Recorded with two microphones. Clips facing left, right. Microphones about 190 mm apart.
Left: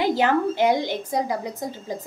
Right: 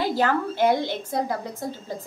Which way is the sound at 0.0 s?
15° left (ahead or behind).